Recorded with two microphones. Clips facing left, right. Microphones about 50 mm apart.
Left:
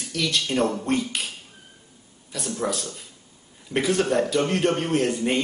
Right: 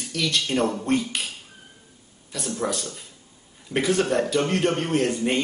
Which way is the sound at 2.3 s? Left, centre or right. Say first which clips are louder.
Even; centre.